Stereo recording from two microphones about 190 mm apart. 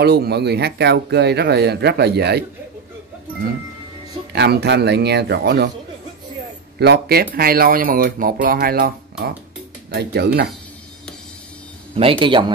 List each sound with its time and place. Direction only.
0.0 s speech: 60° right (ahead or behind)
4.3 s speech: 60° right (ahead or behind)
6.8 s speech: 55° right (ahead or behind)
9.9 s speech: 60° right (ahead or behind)
11.9 s speech: 30° right (ahead or behind)